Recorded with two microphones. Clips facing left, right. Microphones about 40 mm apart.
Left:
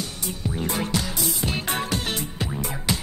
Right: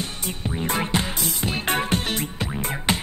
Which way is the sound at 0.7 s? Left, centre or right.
Right.